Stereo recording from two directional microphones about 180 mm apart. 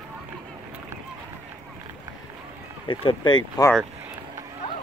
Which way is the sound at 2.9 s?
30° left (ahead or behind).